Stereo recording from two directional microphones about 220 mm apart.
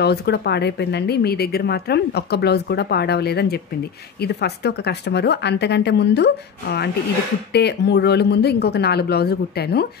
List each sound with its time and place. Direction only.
0.0 s speech: 50° left (ahead or behind)